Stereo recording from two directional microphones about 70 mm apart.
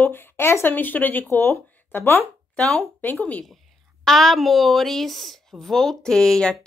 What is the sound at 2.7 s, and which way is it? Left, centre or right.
Speech, left.